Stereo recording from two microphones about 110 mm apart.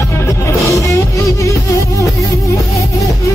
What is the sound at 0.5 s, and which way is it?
Music, 30° left (ahead or behind).